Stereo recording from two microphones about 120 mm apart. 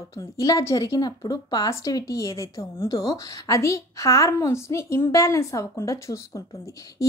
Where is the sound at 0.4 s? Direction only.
30° left (ahead or behind).